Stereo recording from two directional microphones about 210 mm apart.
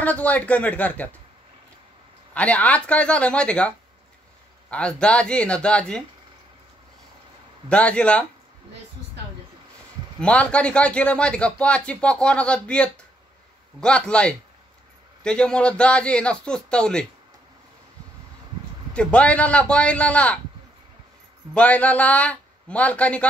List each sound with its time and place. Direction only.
0.0 s a man's voice: 5° left (ahead or behind)
2.3 s speech: 5° left (ahead or behind)
7.7 s speech: 5° left (ahead or behind)
10.2 s speech: 5° left (ahead or behind)
18.9 s speech: 5° left (ahead or behind)
21.5 s a man's voice: 5° left (ahead or behind)